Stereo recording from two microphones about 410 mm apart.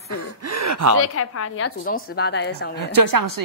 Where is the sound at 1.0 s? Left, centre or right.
Left.